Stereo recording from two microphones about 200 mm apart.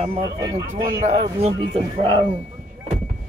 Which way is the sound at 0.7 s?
40° right (ahead or behind).